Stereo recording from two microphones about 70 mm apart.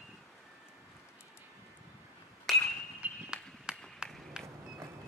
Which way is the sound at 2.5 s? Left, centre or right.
Centre.